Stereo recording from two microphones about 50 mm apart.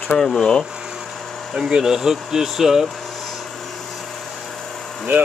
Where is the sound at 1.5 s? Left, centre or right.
Centre.